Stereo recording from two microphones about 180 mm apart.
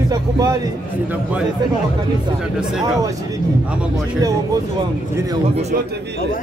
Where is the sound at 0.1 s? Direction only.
20° right (ahead or behind).